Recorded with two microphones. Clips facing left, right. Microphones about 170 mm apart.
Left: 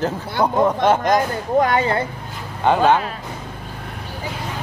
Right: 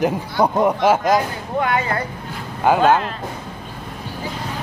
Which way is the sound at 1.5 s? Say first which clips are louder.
Left 3 dB; 35° left (ahead or behind).